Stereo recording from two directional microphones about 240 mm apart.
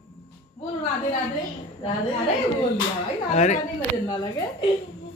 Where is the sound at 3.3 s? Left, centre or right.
Left.